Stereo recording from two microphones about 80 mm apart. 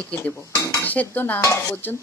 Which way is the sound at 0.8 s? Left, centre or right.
Left.